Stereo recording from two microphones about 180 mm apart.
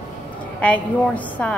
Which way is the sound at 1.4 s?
10° left (ahead or behind).